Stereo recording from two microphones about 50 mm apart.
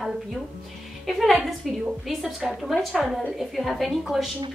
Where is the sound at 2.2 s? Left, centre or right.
Centre.